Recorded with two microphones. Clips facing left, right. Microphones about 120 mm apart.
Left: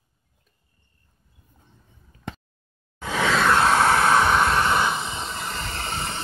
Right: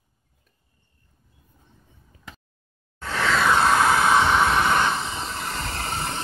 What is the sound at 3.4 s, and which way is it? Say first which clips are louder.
Vehicle: even; centre (ahead or behind).